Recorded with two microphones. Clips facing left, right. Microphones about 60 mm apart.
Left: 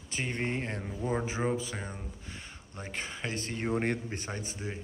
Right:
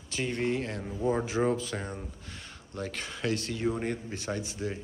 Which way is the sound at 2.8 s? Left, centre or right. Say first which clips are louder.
Right 3 dB; left.